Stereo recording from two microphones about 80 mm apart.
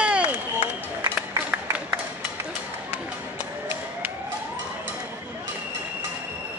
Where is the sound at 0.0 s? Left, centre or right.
Centre.